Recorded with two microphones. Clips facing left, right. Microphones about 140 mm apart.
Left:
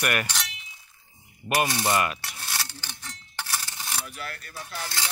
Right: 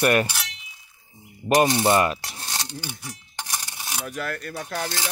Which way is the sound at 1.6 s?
25° right (ahead or behind).